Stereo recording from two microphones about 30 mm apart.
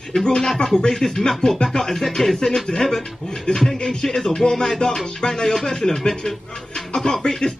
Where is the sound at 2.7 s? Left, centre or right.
Left.